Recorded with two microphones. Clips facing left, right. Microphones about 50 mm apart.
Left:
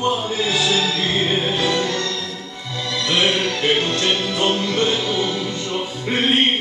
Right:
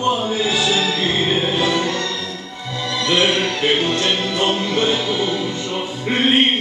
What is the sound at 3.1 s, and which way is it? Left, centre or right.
Music, centre.